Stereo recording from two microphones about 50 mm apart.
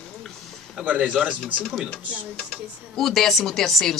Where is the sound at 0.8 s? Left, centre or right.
Right.